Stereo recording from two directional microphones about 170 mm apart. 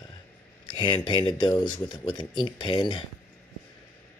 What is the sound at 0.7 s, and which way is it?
Speech, 25° left (ahead or behind).